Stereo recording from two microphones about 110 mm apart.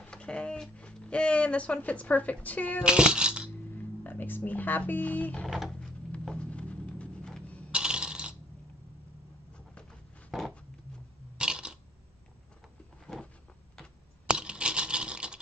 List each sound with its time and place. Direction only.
0.0 s speech: 10° left (ahead or behind)
2.8 s speech: 10° right (ahead or behind)
4.0 s speech: 15° left (ahead or behind)
5.5 s speech: centre (ahead or behind)
6.1 s a sound: 10° left (ahead or behind)
7.7 s coin: 10° right (ahead or behind)
10.3 s a sound: centre (ahead or behind)
13.0 s a sound: 5° left (ahead or behind)
14.3 s patter: 10° right (ahead or behind)